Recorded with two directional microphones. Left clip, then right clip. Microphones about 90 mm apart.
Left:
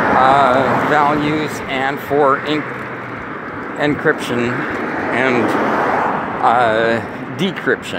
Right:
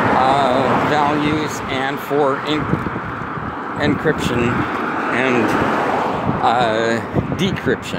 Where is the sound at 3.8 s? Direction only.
30° right (ahead or behind).